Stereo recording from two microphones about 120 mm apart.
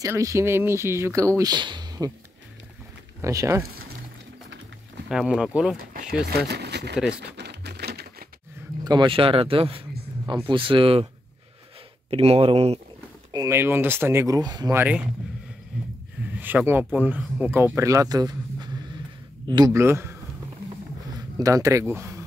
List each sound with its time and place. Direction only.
0.0 s speech: 25° right (ahead or behind)
1.5 s speech: 40° right (ahead or behind)
3.2 s speech: 25° right (ahead or behind)
5.1 s speech: 5° right (ahead or behind)
8.8 s speech: 40° right (ahead or behind)
12.1 s speech: 55° right (ahead or behind)
13.3 s speech: 30° right (ahead or behind)
13.6 s speech: 20° right (ahead or behind); by 14.7 s 35° right (ahead or behind)
14.7 s speech: 20° right (ahead or behind)
15.7 s snort: 10° right (ahead or behind)
16.3 s speech: 15° right (ahead or behind); by 18.7 s 35° right (ahead or behind)
19.7 s speech: 20° right (ahead or behind)
21.4 s speech: 30° right (ahead or behind)